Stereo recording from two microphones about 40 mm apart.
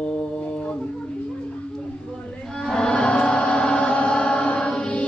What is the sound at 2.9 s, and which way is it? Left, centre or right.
Chant, left.